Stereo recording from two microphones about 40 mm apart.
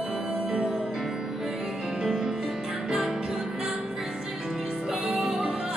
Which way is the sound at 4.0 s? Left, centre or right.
Centre.